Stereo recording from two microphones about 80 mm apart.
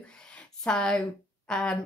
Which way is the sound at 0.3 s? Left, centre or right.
Centre.